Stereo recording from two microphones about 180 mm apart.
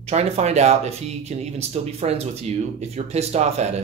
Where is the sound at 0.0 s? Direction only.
35° right (ahead or behind).